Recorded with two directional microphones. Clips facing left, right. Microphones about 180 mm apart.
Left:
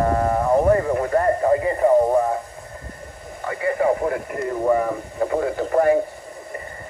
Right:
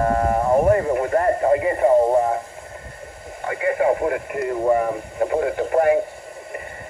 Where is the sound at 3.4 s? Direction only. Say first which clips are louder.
Right 1 dB; 20° right (ahead or behind).